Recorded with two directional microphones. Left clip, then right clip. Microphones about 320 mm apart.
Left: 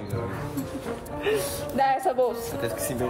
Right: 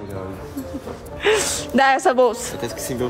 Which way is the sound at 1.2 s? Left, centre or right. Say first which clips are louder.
Right 8 dB; right.